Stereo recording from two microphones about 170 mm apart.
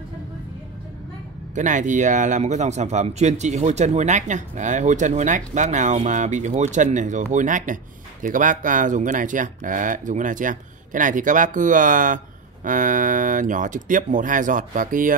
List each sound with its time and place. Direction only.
1.5 s a man's voice: 45° right (ahead or behind)